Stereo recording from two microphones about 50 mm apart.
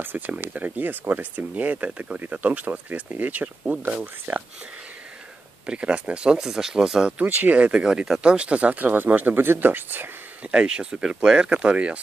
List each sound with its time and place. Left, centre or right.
0.5 s speech: right
4.3 s speech: right
5.7 s speech: right
7.2 s speech: right
10.4 s speech: right